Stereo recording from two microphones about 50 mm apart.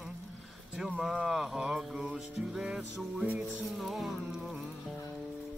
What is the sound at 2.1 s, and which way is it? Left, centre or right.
Music, centre.